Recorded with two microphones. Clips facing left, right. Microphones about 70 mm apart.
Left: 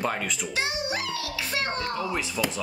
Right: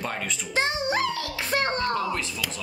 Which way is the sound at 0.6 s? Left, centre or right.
Right.